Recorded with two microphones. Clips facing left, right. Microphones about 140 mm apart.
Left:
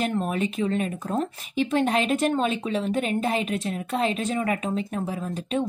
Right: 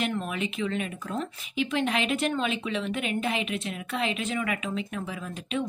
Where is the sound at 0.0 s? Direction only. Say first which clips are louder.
Left 4 dB; 40° left (ahead or behind).